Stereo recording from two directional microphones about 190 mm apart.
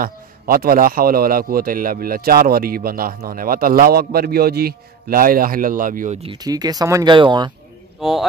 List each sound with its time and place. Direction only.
0.0 s speech: 50° right (ahead or behind)
6.2 s speech: 20° right (ahead or behind)
8.0 s speech: centre (ahead or behind)